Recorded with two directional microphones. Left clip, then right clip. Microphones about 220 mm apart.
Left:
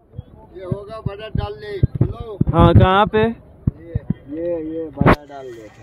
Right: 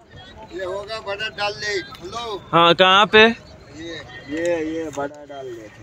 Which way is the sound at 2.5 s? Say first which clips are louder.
Right 1 dB; centre (ahead or behind).